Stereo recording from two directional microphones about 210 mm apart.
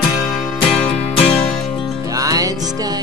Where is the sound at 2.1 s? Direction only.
15° right (ahead or behind).